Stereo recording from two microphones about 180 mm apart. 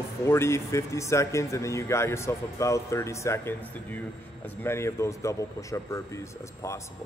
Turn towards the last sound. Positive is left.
turn(degrees=15)  # may be behind; listen again after turning